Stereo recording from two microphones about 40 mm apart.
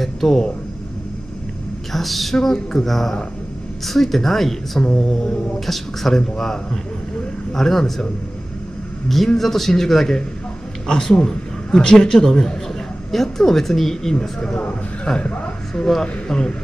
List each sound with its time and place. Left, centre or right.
0.0 s speech: centre
1.9 s a woman's voice: centre
2.3 s speech: centre
9.4 s a man's voice: centre
14.4 s a man's voice: left
15.8 s speech: centre